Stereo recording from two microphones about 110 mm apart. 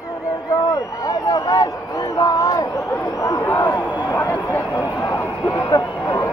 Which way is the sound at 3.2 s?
25° left (ahead or behind).